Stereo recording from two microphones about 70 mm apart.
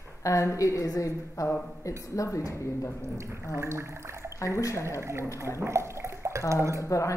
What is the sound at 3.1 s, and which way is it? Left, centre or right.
Speech, right.